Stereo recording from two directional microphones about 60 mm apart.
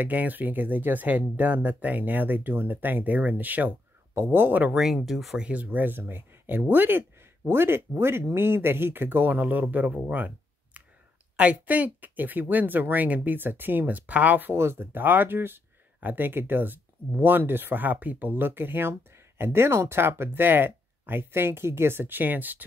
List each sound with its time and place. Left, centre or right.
0.0 s speech: right
4.1 s speech: right
4.7 s speech: centre
5.4 s speech: right
10.0 s a sound: right
11.3 s speech: right
14.5 s speech: right